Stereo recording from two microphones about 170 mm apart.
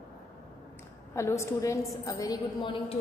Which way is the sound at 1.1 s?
15° left (ahead or behind).